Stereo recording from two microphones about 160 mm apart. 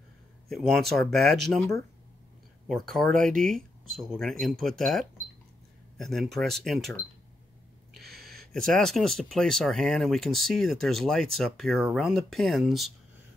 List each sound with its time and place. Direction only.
0.5 s speech: centre (ahead or behind)
8.1 s a sound: 75° right (ahead or behind)
8.4 s speech: 5° left (ahead or behind)